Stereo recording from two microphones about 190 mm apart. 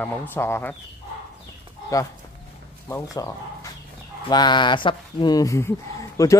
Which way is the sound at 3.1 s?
15° left (ahead or behind).